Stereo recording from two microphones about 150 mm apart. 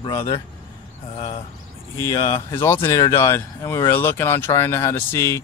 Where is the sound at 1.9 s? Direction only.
20° left (ahead or behind).